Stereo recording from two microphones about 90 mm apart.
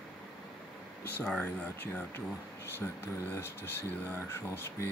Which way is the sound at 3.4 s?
30° left (ahead or behind).